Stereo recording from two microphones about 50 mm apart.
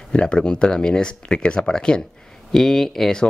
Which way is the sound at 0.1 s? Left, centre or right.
Centre.